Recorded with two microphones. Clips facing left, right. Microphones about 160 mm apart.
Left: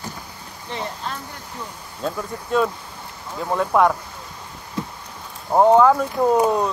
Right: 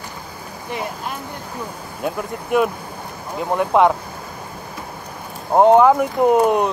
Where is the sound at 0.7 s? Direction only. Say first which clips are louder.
Right 2 dB; 10° right (ahead or behind).